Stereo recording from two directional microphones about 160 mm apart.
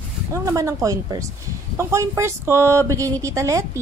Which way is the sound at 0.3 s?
20° right (ahead or behind).